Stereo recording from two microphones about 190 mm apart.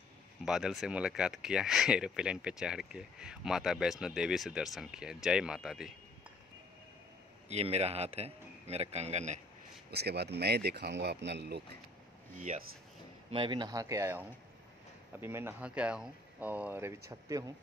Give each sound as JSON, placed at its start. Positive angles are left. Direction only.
{"t": 0.5, "sound": "speech", "side_deg": 0}
{"t": 7.4, "sound": "a man's voice", "side_deg": -35}
{"t": 9.8, "sound": "speech", "side_deg": -60}
{"t": 12.5, "sound": "a man's voice", "side_deg": -40}
{"t": 13.3, "sound": "speech", "side_deg": -25}